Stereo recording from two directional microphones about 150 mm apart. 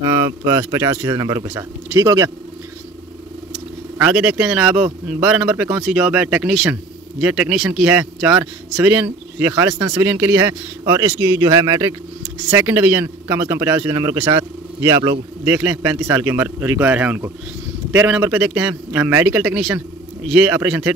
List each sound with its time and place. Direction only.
0.0 s speech: 25° right (ahead or behind)
4.0 s a man's voice: 5° right (ahead or behind); by 15.1 s 25° right (ahead or behind)
15.4 s a man's voice: 10° right (ahead or behind)